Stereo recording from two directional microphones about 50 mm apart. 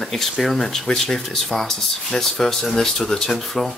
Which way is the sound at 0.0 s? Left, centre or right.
Centre.